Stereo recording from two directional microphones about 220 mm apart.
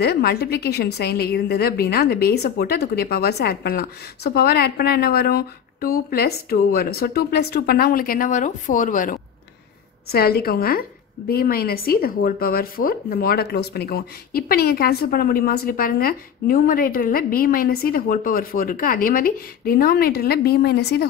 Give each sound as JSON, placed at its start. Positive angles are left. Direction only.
{"t": 0.0, "sound": "a woman's voice", "side_deg": 45}